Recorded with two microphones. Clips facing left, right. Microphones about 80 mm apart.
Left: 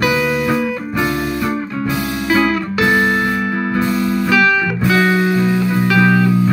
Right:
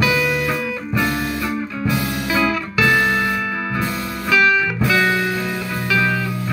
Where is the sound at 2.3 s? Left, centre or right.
Left.